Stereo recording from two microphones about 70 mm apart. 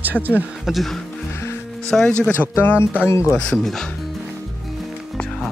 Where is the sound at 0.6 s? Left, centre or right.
Centre.